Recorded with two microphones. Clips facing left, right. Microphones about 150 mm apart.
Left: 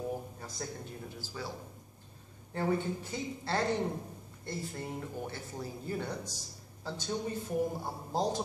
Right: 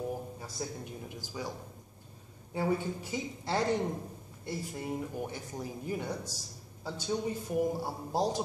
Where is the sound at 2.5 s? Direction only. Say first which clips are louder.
Even; 10° right (ahead or behind).